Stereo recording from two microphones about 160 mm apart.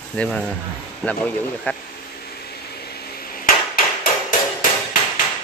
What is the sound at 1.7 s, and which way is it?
Speech, 10° left (ahead or behind).